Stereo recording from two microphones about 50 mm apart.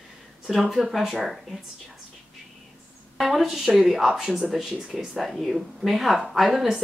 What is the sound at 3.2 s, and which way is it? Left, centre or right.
Speech, centre.